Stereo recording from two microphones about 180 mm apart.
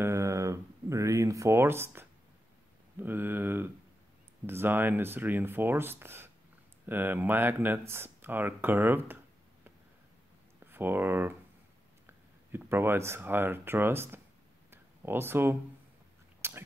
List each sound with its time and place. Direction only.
0.0 s a sound: 15° right (ahead or behind)
3.0 s speech: 10° right (ahead or behind)
10.6 s speech: 10° right (ahead or behind)
12.5 s speech: 10° right (ahead or behind)
14.7 s a sound: 10° right (ahead or behind)
16.3 s dog: 15° right (ahead or behind)